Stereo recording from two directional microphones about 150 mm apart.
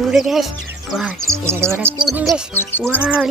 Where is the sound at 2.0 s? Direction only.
5° right (ahead or behind).